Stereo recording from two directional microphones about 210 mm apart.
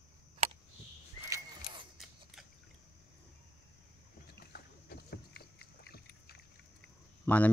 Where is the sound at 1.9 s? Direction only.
Centre (ahead or behind).